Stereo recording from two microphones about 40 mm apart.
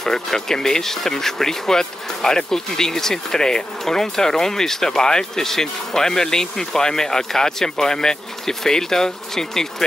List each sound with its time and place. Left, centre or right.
0.0 s speech: centre